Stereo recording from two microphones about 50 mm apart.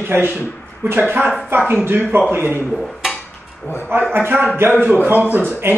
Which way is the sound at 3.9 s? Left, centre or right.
Right.